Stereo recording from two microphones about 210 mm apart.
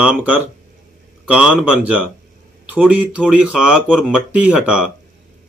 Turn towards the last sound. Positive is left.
turn(degrees=-5)  # may be behind; listen again after turning